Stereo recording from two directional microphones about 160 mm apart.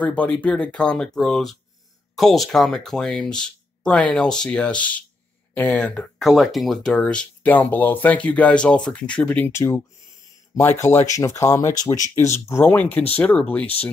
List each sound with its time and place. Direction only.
0.0 s speech: 10° left (ahead or behind)